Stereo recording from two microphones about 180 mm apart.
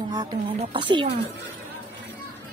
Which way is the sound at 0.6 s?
30° right (ahead or behind).